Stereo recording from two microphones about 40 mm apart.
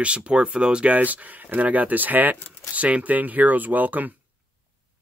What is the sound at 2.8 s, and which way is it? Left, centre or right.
Speech, right.